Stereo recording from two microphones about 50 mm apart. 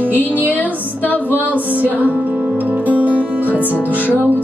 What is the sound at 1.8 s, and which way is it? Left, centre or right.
Music, right.